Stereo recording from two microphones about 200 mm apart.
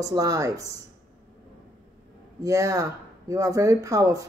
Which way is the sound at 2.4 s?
15° right (ahead or behind).